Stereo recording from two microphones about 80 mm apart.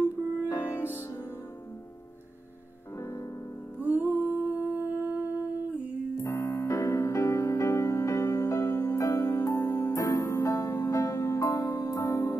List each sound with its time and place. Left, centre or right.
0.5 s music: left
3.0 s music: left
3.8 s humming: right
6.1 s music: left